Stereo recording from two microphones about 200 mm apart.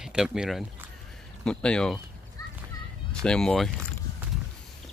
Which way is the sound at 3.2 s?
5° left (ahead or behind).